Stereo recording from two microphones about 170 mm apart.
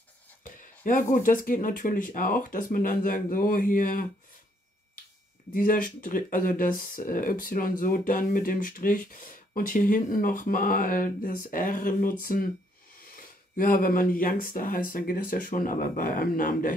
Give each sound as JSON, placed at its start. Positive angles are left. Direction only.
{"t": 0.4, "sound": "speech", "side_deg": 50}
{"t": 5.5, "sound": "speech", "side_deg": 55}